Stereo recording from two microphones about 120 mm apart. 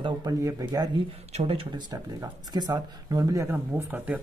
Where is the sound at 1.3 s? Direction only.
50° right (ahead or behind).